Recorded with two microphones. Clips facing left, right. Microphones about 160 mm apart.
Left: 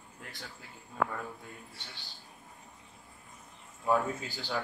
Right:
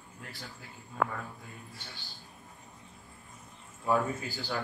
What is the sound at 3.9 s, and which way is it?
Speech, centre (ahead or behind).